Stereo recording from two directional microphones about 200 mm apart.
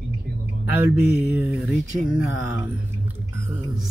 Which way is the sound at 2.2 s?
75° left (ahead or behind).